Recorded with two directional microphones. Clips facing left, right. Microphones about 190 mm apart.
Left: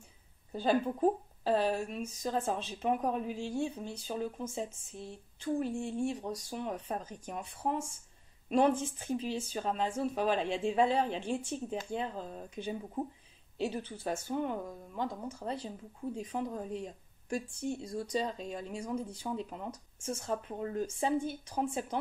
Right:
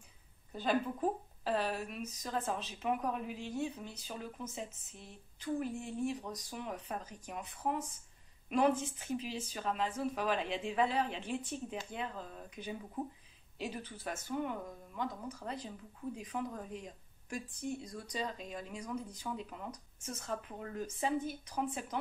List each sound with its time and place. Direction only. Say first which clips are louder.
0.5 s speech: left 4 dB; 30° left (ahead or behind)